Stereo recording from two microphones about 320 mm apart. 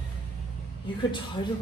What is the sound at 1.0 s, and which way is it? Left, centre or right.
Speech, centre.